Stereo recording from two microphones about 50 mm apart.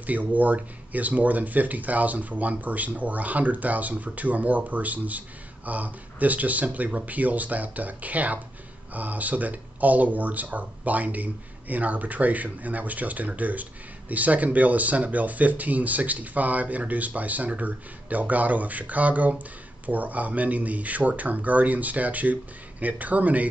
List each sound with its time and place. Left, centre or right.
0.0 s speech: right